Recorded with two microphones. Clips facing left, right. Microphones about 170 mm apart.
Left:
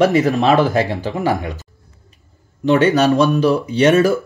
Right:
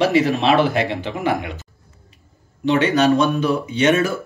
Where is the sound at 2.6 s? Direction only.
40° left (ahead or behind).